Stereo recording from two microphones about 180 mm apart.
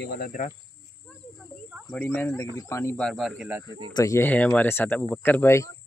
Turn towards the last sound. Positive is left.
turn(degrees=15)  # may be behind; listen again after turning